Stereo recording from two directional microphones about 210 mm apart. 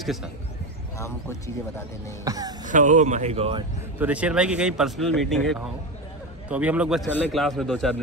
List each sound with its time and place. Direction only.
0.0 s speech: centre (ahead or behind)
0.9 s speech: 15° left (ahead or behind)
2.2 s speech: 15° right (ahead or behind)
2.6 s speech: 35° right (ahead or behind)
4.0 s speech: 5° right (ahead or behind)